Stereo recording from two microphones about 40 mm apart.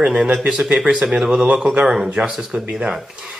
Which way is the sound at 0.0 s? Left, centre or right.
Right.